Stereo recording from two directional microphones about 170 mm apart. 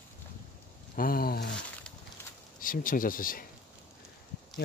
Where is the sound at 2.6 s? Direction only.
55° left (ahead or behind).